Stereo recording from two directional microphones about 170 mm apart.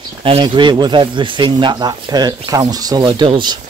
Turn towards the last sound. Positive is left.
turn(degrees=-25)  # may be behind; listen again after turning